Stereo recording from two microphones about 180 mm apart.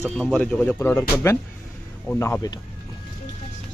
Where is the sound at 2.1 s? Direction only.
10° left (ahead or behind).